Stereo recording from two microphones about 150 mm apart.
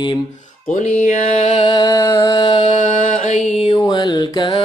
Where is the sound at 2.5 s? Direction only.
35° left (ahead or behind).